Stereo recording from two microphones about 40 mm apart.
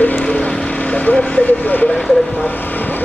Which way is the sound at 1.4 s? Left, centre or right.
Left.